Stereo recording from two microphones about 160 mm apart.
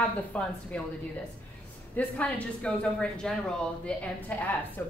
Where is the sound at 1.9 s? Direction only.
10° left (ahead or behind).